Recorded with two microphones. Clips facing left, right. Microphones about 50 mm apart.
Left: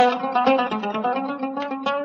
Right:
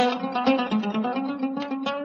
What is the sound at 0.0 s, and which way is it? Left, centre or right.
Music, centre.